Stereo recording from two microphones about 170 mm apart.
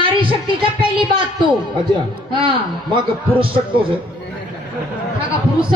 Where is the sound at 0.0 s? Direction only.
30° right (ahead or behind).